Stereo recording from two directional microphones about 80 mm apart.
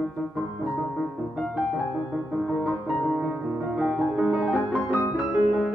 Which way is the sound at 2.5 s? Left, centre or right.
Centre.